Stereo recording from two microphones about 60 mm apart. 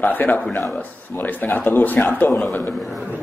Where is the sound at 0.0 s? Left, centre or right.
Left.